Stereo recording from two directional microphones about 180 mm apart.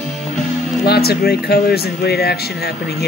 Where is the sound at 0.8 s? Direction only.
60° left (ahead or behind).